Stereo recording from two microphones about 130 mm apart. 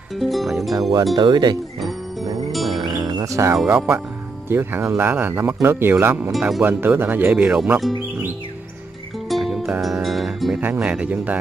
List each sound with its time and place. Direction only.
0.2 s music: centre (ahead or behind)
1.1 s speech: 35° right (ahead or behind)
2.5 s music: centre (ahead or behind)
2.8 s music: 30° right (ahead or behind)
3.5 s speech: 10° right (ahead or behind)
9.3 s music: centre (ahead or behind)
10.6 s speech: 10° right (ahead or behind)